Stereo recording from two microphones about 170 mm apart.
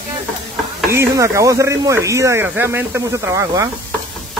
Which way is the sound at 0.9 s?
15° right (ahead or behind).